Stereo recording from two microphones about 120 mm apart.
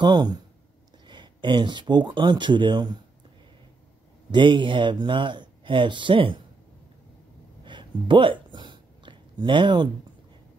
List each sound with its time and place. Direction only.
0.0 s speech: 35° right (ahead or behind)
4.3 s speech: 40° right (ahead or behind)
7.6 s a sound: 40° right (ahead or behind)